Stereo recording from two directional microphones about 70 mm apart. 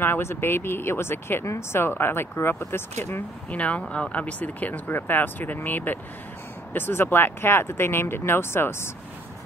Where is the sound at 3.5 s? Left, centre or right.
Centre.